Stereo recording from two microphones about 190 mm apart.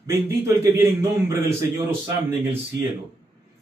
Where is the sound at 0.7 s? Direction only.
15° right (ahead or behind).